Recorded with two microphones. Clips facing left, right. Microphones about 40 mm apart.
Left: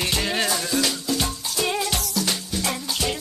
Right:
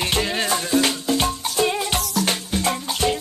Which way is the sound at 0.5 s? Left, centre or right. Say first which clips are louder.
Right 4 dB; right.